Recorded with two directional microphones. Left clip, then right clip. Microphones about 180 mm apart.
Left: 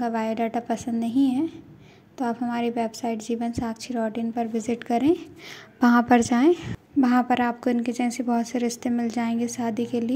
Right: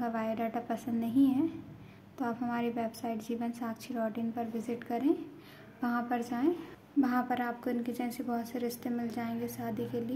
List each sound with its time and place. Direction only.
0.0 s a woman's voice: 30° left (ahead or behind)